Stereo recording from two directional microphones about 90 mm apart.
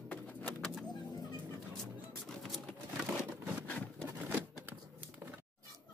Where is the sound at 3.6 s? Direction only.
20° left (ahead or behind).